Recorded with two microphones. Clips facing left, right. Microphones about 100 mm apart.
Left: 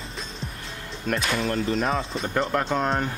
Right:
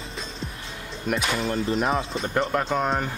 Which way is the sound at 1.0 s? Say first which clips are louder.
Even; 5° right (ahead or behind).